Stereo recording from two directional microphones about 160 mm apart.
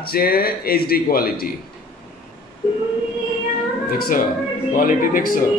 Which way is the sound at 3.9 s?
60° left (ahead or behind).